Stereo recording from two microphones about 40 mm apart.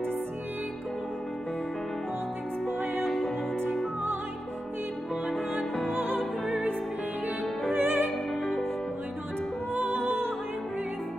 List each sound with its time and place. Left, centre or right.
2.8 s music: centre
5.3 s music: centre
5.9 s music: right
7.7 s music: right
9.8 s music: right